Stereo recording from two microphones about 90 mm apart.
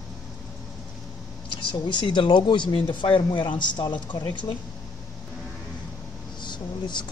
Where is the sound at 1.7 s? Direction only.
60° left (ahead or behind).